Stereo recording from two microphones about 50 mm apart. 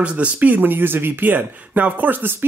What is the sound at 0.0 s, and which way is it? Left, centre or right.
Speech, right.